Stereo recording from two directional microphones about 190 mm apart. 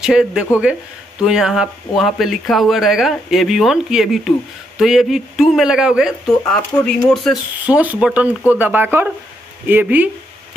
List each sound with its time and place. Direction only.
0.0 s speech: 5° right (ahead or behind)